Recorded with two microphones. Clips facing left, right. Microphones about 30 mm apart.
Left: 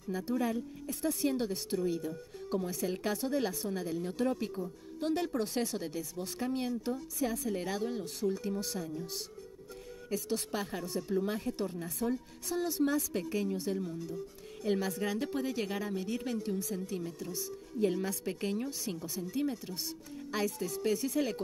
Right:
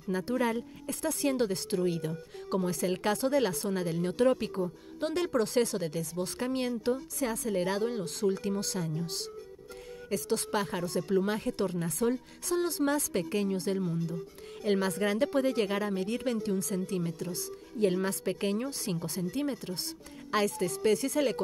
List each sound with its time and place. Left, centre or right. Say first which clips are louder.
0.1 s a woman's voice: right 3 dB; right
16.4 s a woman's voice: right 4 dB; right
17.7 s a woman's voice: right 3 dB; right